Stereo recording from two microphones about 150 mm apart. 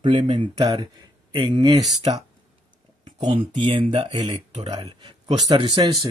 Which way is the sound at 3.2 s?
40° right (ahead or behind).